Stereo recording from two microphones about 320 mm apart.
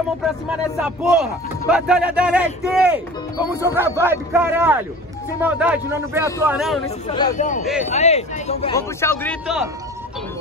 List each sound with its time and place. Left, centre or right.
0.2 s a man's voice: centre
7.1 s a man's voice: centre